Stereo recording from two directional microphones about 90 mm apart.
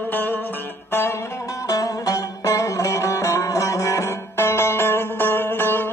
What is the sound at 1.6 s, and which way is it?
Music, 40° left (ahead or behind).